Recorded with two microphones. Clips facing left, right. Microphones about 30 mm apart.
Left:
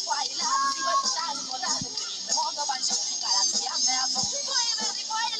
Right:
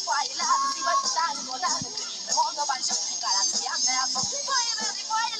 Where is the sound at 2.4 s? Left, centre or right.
Left.